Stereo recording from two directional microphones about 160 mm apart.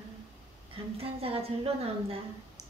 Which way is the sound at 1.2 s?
35° right (ahead or behind).